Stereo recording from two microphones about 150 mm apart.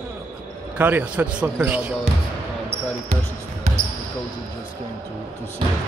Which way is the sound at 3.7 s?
50° right (ahead or behind).